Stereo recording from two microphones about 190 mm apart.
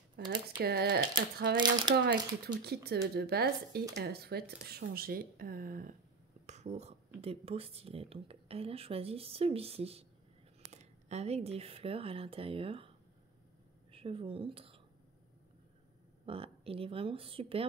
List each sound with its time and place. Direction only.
0.3 s speech: 55° right (ahead or behind)
1.6 s a woman's voice: 25° right (ahead or behind)
2.0 s speech: 55° right (ahead or behind)
6.4 s a sound: 35° right (ahead or behind)
7.2 s speech: 30° right (ahead or behind)
13.9 s speech: 30° right (ahead or behind)
16.3 s a woman's voice: 30° right (ahead or behind)